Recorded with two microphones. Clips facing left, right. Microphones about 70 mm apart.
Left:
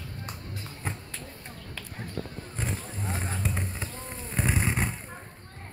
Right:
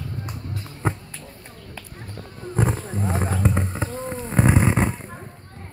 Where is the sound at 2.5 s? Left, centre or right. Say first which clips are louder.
Right 13 dB; right.